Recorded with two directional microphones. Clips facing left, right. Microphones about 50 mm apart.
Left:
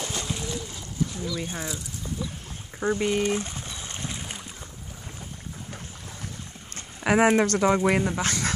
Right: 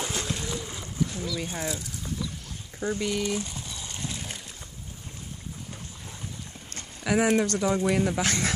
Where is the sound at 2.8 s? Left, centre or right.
Left.